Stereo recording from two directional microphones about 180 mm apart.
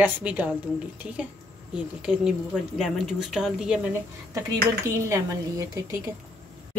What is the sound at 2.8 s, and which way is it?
Speech, centre (ahead or behind).